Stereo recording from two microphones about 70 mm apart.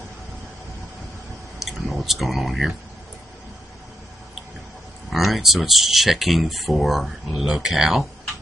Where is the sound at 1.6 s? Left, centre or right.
Centre.